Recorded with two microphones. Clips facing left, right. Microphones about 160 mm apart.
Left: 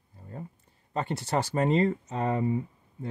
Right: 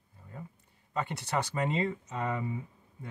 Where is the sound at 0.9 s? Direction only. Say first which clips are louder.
Left 4 dB; 35° left (ahead or behind).